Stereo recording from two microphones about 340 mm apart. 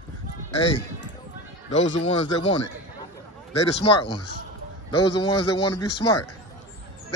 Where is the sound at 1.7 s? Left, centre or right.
Centre.